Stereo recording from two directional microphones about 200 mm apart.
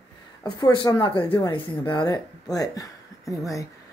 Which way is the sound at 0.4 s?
20° left (ahead or behind).